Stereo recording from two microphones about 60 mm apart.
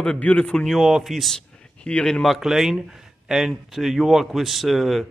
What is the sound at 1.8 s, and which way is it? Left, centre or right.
Speech, centre.